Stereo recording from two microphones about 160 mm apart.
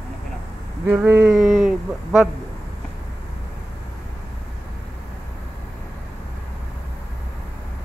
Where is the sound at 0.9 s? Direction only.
10° right (ahead or behind).